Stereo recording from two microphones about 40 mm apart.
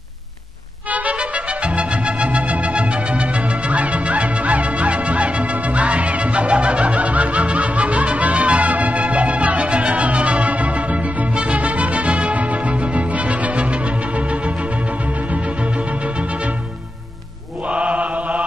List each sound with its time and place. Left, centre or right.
0.9 s music: right
17.6 s mantra: right